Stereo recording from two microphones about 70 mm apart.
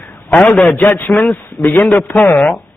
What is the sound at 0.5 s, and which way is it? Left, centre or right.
A man's voice, centre.